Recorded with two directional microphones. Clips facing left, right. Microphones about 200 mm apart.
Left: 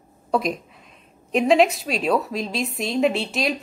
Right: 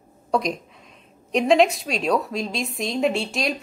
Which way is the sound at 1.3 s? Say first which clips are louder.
Even; centre (ahead or behind).